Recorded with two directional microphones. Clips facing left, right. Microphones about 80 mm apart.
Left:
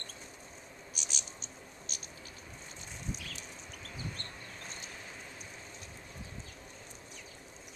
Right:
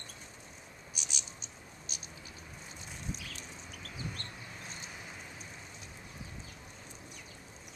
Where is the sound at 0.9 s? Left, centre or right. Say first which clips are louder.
Even; left.